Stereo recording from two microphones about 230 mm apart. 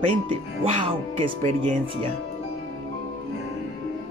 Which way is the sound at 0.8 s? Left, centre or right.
Right.